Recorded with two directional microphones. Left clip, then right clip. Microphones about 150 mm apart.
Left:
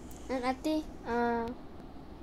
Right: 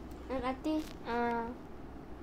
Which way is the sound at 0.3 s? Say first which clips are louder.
Left 3 dB; 90° left.